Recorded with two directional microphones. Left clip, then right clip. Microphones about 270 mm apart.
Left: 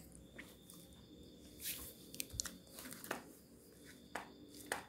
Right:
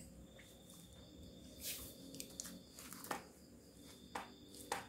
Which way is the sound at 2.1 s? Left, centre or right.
Left.